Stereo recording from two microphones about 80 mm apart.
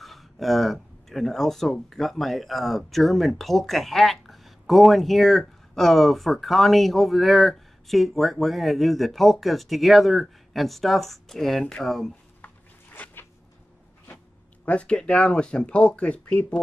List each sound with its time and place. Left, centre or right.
0.0 s speech: centre
12.9 s a sound: left
14.1 s speech: centre